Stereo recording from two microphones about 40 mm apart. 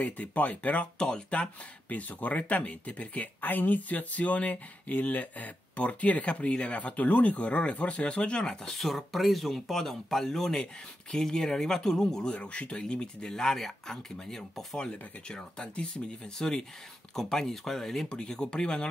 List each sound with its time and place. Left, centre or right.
0.0 s speech: left
0.9 s speech: left
1.9 s speech: left
3.3 s speech: left
8.6 s speech: centre
12.3 s speech: left
13.6 s speech: centre
14.8 s speech: left
17.1 s speech: centre
18.0 s speech: left